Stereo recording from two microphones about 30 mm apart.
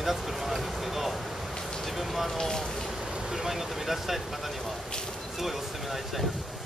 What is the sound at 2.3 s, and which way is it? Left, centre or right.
Speech, centre.